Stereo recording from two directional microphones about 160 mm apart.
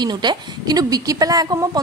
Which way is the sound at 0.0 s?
25° right (ahead or behind).